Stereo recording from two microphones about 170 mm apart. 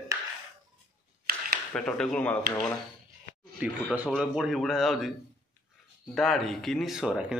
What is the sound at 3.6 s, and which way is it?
Speech, 10° right (ahead or behind).